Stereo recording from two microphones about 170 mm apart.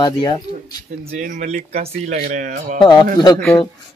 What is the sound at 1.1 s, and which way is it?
Speech, 45° right (ahead or behind).